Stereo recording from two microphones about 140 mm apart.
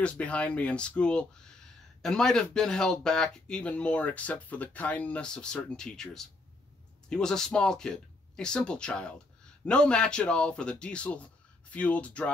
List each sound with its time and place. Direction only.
0.0 s a man's voice: 10° left (ahead or behind)